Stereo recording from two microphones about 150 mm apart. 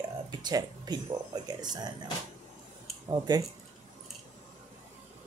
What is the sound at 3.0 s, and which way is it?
Speech, 25° right (ahead or behind).